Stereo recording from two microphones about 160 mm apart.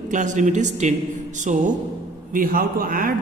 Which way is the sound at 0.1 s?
50° right (ahead or behind).